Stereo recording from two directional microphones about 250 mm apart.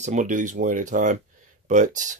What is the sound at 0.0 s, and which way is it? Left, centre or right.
Speech, right.